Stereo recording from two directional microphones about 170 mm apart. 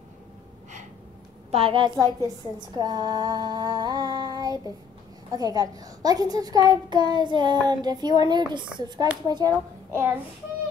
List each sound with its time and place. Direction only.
1.5 s a woman's voice: 30° right (ahead or behind)